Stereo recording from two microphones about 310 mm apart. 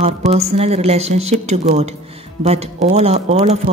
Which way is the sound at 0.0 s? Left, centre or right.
Centre.